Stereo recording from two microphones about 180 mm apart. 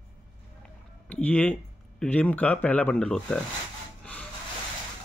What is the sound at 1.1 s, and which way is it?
Speech, 10° left (ahead or behind).